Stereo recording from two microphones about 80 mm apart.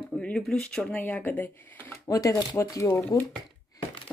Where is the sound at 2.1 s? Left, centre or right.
Left.